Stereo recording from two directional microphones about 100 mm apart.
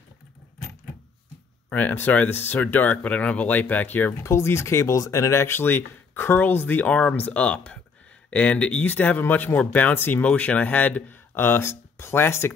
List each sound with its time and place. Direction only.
1.7 s speech: 15° left (ahead or behind)
4.2 s speech: 30° left (ahead or behind)